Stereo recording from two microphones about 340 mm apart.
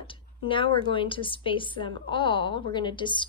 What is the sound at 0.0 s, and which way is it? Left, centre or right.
A woman's voice, centre.